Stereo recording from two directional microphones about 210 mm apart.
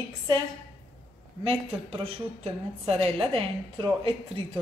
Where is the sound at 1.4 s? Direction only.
25° right (ahead or behind).